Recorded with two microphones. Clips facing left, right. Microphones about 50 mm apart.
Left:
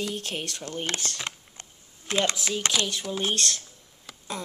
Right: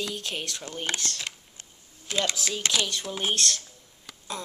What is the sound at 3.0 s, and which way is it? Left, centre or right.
Speech, centre.